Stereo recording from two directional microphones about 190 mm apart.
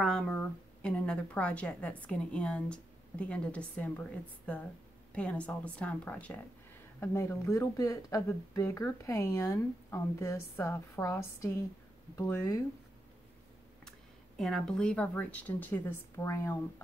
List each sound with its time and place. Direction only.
0.0 s a sound: 5° left (ahead or behind)
0.8 s speech: 5° left (ahead or behind)
13.8 s speech: 5° left (ahead or behind)